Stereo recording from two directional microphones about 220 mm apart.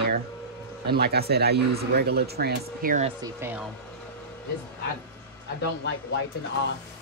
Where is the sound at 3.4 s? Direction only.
10° right (ahead or behind).